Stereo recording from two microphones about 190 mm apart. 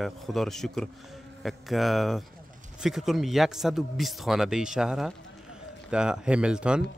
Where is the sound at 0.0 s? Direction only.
Centre (ahead or behind).